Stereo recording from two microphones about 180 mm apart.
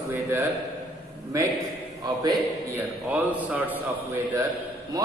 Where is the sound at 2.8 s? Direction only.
10° right (ahead or behind).